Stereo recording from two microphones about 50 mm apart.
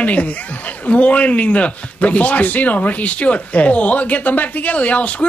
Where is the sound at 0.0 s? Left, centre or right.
Left.